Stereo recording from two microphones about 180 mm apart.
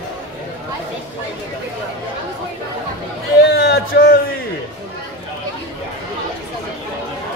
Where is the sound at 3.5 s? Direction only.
65° left (ahead or behind).